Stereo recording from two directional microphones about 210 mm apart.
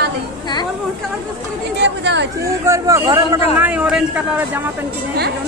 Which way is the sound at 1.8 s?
55° right (ahead or behind).